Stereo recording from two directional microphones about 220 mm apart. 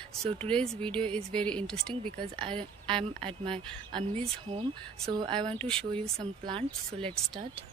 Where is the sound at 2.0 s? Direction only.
25° right (ahead or behind).